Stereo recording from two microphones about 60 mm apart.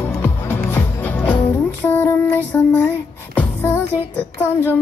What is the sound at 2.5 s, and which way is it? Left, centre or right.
Music, left.